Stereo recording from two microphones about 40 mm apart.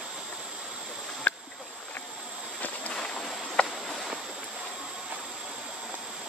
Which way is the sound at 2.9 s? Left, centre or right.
Centre.